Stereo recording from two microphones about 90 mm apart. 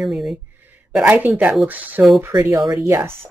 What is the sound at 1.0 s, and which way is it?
Speech, 15° right (ahead or behind).